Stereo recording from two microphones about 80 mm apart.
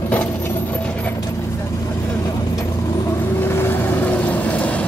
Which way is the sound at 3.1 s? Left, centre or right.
Left.